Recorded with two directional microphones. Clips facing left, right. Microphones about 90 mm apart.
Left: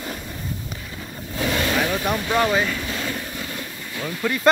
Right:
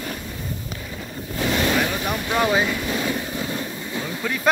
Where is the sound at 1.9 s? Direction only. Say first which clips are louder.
Left 2 dB; centre (ahead or behind).